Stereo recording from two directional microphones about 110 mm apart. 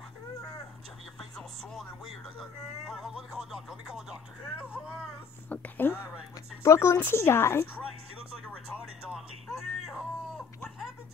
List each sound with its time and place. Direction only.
2.9 s speech: 5° right (ahead or behind)
5.5 s speech: 15° left (ahead or behind)
9.1 s a sound: centre (ahead or behind)